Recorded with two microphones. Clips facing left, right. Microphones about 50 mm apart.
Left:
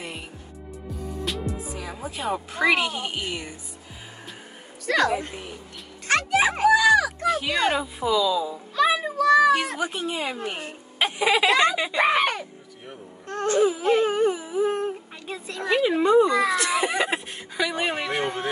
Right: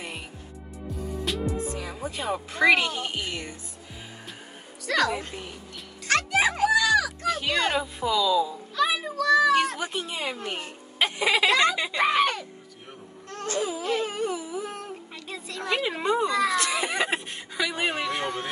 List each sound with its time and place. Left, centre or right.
0.8 s music: centre
4.8 s a woman's voice: left
5.2 s speech: centre
6.0 s music: left
7.2 s speech: centre
8.7 s music: left
9.8 s speech: centre
11.5 s speech: centre
13.3 s baby cry: left
15.8 s speech: centre
16.1 s speech: centre
16.4 s speech: centre
18.0 s speech: centre